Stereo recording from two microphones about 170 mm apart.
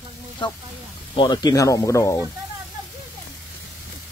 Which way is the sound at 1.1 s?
25° left (ahead or behind).